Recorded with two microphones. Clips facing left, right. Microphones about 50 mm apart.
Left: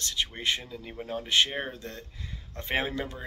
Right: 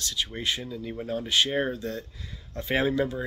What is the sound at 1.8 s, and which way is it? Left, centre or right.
Speech, left.